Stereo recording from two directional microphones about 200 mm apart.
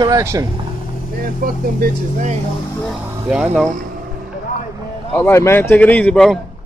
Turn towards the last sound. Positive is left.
turn(degrees=5)  # may be behind; listen again after turning